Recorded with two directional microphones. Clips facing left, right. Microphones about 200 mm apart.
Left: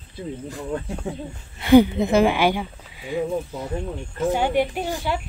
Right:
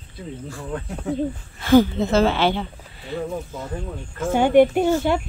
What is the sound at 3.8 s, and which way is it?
Speech, 25° left (ahead or behind).